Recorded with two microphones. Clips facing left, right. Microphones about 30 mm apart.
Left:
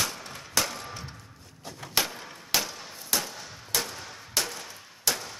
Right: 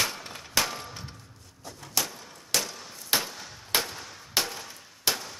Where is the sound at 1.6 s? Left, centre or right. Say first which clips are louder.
Left 3 dB; left.